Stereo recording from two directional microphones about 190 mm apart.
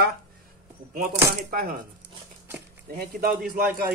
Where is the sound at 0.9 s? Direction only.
50° right (ahead or behind).